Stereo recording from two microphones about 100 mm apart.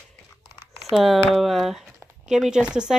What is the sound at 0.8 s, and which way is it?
Speech, centre (ahead or behind).